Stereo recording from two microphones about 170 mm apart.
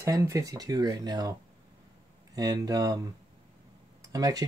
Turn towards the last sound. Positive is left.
turn(degrees=-20)  # may be behind; listen again after turning